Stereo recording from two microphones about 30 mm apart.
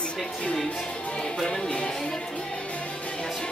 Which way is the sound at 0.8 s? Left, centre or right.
Left.